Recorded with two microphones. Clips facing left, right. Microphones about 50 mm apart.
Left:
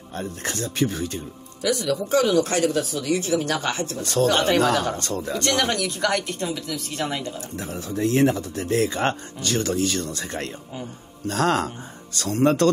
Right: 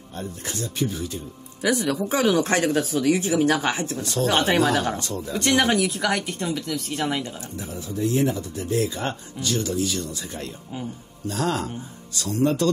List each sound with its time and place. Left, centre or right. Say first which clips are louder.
0.2 s speech: left 2 dB; left
1.6 s speech: right 1 dB; right
4.0 s speech: left 6 dB; left
4.3 s speech: right 1 dB; centre
5.0 s speech: left 2 dB; left
5.4 s speech: right 4 dB; centre
5.8 s a woman's voice: even; centre
7.5 s speech: left 1 dB; left